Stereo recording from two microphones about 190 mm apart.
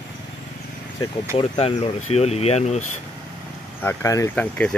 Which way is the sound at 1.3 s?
30° left (ahead or behind).